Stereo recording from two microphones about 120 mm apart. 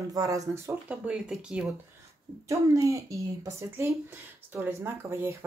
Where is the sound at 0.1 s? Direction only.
30° right (ahead or behind).